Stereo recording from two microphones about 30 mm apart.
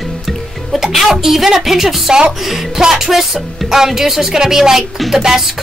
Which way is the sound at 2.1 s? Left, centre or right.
Right.